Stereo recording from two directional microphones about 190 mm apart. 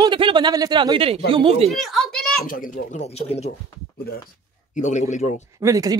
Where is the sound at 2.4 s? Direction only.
45° left (ahead or behind).